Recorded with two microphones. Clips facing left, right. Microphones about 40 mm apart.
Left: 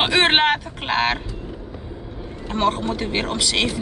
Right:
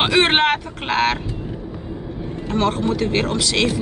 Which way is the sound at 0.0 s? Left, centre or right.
Centre.